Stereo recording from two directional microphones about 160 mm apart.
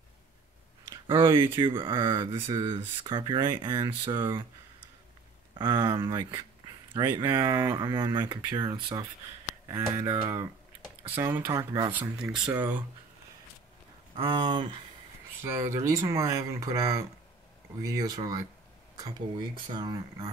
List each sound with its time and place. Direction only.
1.2 s speech: 15° right (ahead or behind)
1.6 s speech: 30° right (ahead or behind)
5.6 s speech: 25° right (ahead or behind)
7.7 s speech: 30° right (ahead or behind); by 12.6 s 5° right (ahead or behind)
14.2 s speech: 25° right (ahead or behind)